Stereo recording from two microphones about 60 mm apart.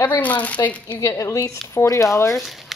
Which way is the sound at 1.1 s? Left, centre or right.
Left.